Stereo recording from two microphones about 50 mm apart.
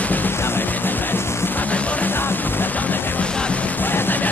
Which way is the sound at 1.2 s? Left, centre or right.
Left.